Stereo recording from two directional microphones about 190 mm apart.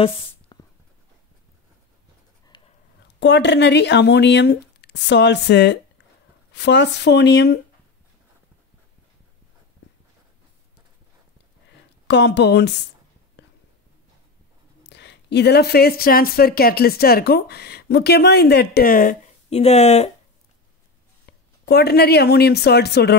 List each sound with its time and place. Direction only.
0.5 s a sound: 25° left (ahead or behind)
2.5 s a sound: 25° left (ahead or behind)
3.2 s speech: 65° left (ahead or behind)
12.1 s speech: 65° left (ahead or behind)
14.8 s speech: 65° left (ahead or behind); by 19.1 s 50° left (ahead or behind)
19.5 s speech: 35° left (ahead or behind)
21.6 s speech: 55° left (ahead or behind)